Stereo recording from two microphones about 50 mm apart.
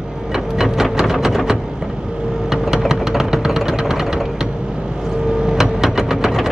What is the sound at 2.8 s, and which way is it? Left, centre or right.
Vehicle, centre.